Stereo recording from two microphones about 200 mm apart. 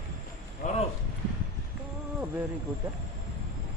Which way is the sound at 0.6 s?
35° left (ahead or behind).